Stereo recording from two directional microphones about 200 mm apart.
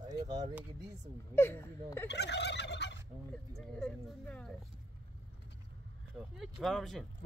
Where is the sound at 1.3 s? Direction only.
10° left (ahead or behind).